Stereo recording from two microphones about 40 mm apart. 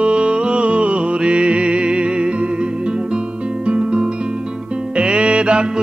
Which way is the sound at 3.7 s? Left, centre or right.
Right.